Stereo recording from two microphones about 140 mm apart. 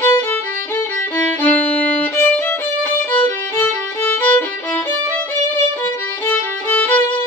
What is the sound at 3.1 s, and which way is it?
Violin, 10° left (ahead or behind).